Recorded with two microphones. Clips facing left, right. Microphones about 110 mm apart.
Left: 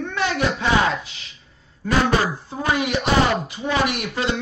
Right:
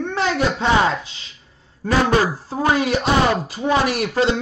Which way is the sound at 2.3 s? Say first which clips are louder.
Right 4 dB; 35° right (ahead or behind).